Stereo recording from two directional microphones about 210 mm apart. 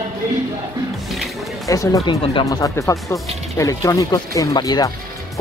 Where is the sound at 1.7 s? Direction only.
15° left (ahead or behind).